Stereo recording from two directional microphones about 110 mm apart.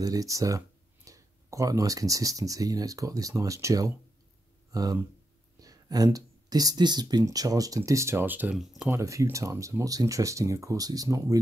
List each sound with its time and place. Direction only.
0.0 s speech: 30° right (ahead or behind); by 8.5 s 15° right (ahead or behind)
8.5 s speech: 5° right (ahead or behind)
8.9 s speech: 30° right (ahead or behind)